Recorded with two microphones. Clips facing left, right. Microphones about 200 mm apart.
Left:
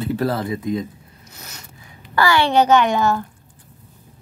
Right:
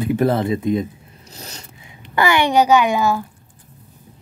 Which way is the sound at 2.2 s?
20° right (ahead or behind).